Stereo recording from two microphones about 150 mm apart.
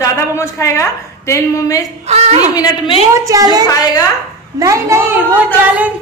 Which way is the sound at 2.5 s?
25° left (ahead or behind).